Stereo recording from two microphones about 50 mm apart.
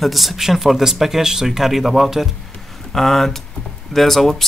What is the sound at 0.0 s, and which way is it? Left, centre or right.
Speech, centre.